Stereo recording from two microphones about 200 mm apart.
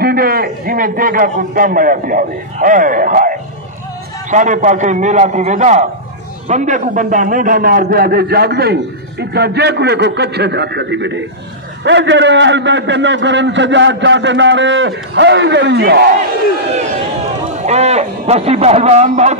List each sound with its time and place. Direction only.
0.0 s a man's voice: 45° right (ahead or behind)
17.6 s a man's voice: 35° right (ahead or behind)